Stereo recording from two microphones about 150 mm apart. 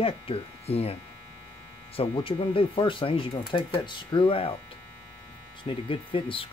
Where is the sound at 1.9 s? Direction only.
35° left (ahead or behind).